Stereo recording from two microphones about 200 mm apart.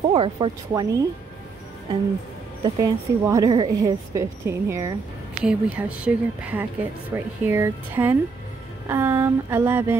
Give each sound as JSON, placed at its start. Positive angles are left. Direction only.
{"t": 0.1, "sound": "speech", "side_deg": -25}
{"t": 2.6, "sound": "speech", "side_deg": -15}